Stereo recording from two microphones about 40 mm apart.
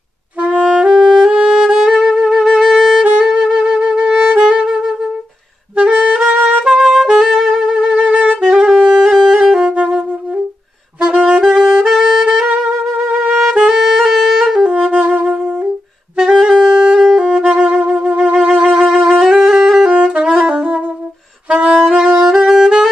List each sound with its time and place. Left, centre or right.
0.4 s music: right
1.0 s saxophone: centre
1.6 s music: centre
5.8 s saxophone: right
6.0 s saxophone: centre
9.6 s wind instrument: right
11.2 s saxophone: right
13.3 s music: centre
14.9 s music: right
16.2 s saxophone: centre
18.0 s music: right
19.4 s music: centre
19.9 s saxophone: right